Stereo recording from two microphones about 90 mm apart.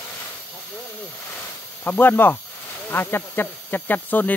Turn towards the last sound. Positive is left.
turn(degrees=20)  # may be behind; listen again after turning